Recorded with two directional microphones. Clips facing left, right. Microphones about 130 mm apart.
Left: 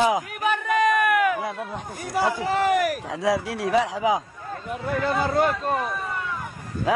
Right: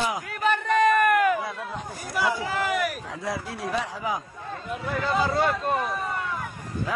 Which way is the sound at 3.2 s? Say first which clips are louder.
Left 8 dB; 80° left.